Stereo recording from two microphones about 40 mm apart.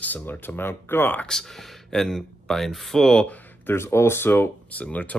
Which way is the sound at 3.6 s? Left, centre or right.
Left.